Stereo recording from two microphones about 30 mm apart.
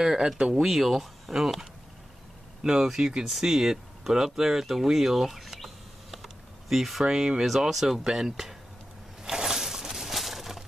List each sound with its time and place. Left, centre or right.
0.0 s speech: centre
2.7 s speech: centre
3.0 s speech: right
3.3 s speech: centre
6.1 s typing: centre
7.1 s speech: centre
7.7 s speech: centre
8.0 s speech: centre
9.3 s a sound: centre